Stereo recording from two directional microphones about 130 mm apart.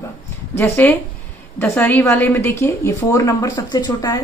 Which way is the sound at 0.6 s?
15° left (ahead or behind).